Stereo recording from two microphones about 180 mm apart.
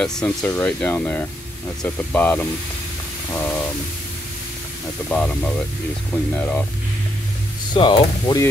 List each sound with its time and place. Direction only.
0.0 s speech: 5° left (ahead or behind)
3.3 s a sound: 10° left (ahead or behind)
5.1 s speech: 5° left (ahead or behind)
7.7 s speech: 25° left (ahead or behind)